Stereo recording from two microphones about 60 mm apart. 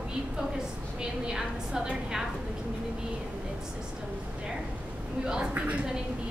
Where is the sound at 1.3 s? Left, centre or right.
Centre.